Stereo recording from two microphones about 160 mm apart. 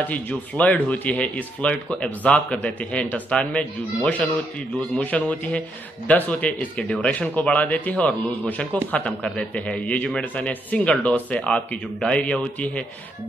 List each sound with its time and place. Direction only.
0.0 s speech: 10° left (ahead or behind)